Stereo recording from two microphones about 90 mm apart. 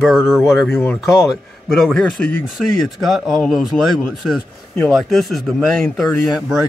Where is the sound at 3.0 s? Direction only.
Centre (ahead or behind).